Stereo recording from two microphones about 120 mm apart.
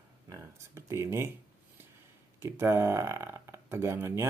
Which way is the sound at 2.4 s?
20° right (ahead or behind).